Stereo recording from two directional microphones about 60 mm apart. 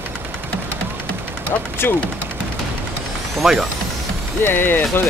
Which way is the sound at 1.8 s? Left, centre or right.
Left.